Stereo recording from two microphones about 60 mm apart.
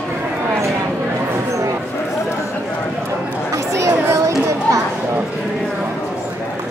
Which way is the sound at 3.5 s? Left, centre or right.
Right.